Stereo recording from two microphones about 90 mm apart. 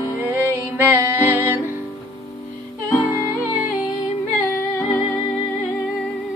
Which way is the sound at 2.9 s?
30° left (ahead or behind).